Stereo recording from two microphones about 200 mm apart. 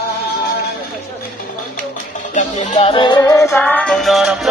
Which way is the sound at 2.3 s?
35° left (ahead or behind).